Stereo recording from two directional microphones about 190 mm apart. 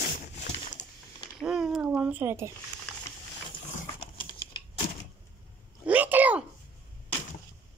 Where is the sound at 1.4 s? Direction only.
5° right (ahead or behind).